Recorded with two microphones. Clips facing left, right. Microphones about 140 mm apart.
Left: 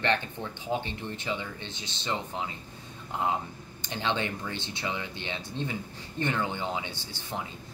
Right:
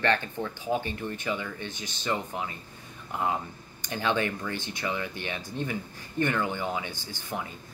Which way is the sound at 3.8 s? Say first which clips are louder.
Right 3 dB; 25° left (ahead or behind).